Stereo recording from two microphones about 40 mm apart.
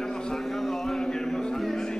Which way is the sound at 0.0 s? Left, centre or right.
Centre.